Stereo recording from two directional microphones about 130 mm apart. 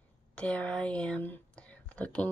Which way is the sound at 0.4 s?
10° left (ahead or behind).